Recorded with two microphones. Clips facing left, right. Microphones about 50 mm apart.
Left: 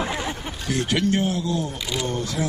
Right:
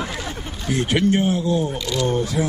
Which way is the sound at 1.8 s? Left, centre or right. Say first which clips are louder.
Right 4 dB; centre.